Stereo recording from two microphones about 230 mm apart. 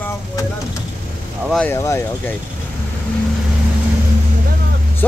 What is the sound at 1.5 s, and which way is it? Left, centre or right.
Speech, centre.